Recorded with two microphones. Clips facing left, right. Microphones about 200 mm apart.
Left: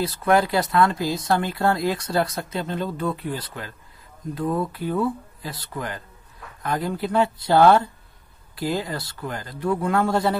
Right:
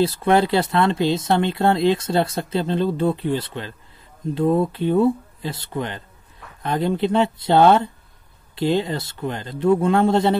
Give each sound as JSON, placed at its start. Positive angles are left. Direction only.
{"t": 0.0, "sound": "speech", "side_deg": -30}